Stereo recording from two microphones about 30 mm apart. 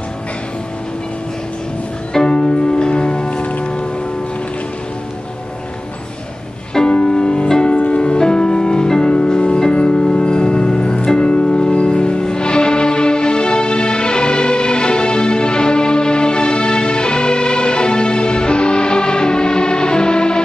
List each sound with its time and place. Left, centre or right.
2.2 s music: left
3.3 s music: left
6.9 s music: left
8.2 s music: left